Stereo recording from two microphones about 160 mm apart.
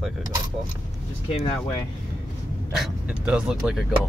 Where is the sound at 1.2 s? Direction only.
40° left (ahead or behind).